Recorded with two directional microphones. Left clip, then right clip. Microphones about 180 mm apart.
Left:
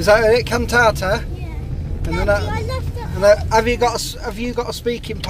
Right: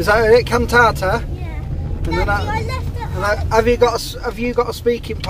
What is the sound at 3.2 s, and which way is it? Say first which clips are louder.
Speech: left 3 dB; 30° left (ahead or behind).